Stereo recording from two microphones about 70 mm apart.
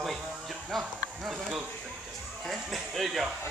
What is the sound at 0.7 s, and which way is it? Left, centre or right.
A man's voice, centre.